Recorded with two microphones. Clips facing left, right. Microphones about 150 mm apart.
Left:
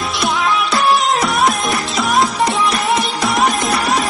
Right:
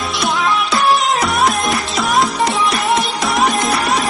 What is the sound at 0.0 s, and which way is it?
Music, centre (ahead or behind).